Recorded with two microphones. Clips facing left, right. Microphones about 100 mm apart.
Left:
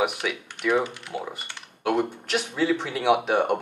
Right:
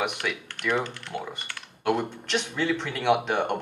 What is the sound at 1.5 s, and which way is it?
Computer keyboard, 15° left (ahead or behind).